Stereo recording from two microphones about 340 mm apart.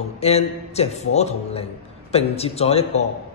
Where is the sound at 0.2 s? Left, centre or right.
Centre.